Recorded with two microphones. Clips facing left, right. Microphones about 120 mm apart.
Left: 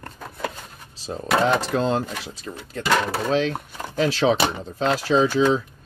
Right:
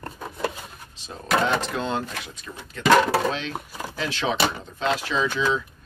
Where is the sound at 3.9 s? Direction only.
35° left (ahead or behind).